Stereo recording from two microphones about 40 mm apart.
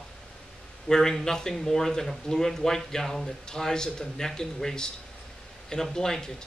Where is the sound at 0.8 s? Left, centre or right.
Centre.